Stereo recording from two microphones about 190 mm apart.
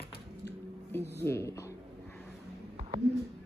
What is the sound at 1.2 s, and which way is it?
Speech, 15° left (ahead or behind).